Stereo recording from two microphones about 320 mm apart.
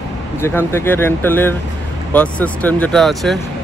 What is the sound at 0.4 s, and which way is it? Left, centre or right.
Speech, centre.